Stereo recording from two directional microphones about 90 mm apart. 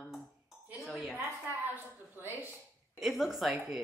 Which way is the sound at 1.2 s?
25° right (ahead or behind).